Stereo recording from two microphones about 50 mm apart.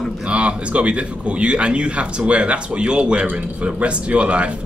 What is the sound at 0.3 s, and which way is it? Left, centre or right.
Speech, right.